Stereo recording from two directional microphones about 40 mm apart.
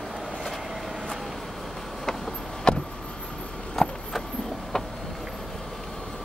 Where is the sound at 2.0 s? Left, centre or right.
Centre.